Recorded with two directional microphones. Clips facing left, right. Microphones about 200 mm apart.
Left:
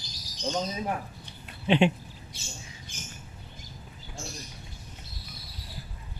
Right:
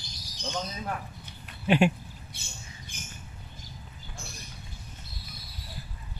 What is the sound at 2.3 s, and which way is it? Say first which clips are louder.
Squawk: left 3 dB; 55° right (ahead or behind).